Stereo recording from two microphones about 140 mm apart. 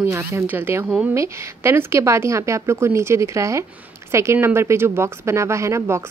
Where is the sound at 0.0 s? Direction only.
15° right (ahead or behind).